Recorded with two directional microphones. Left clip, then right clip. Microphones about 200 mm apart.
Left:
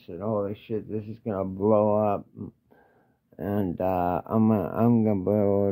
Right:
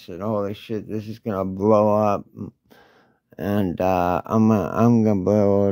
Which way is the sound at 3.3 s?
45° right (ahead or behind).